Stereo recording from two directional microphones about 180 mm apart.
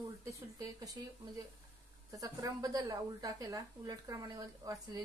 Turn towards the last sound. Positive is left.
turn(degrees=-20)  # may be behind; listen again after turning